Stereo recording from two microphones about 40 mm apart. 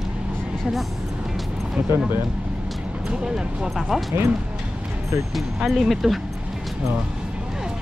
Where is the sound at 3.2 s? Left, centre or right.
Centre.